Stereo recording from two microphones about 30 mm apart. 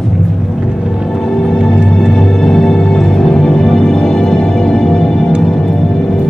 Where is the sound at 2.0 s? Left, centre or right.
Centre.